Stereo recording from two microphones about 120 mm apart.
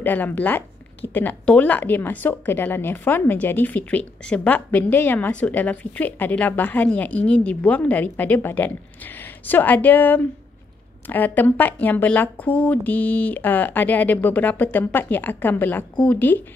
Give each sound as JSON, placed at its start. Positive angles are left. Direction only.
{"t": 0.0, "sound": "speech", "side_deg": 15}